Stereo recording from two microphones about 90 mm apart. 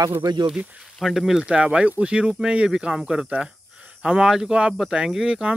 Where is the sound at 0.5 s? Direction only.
10° right (ahead or behind).